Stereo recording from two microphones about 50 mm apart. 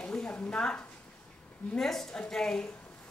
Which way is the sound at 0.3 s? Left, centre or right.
Left.